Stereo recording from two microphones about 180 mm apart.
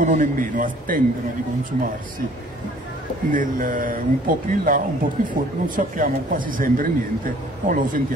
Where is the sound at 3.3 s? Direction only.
45° right (ahead or behind).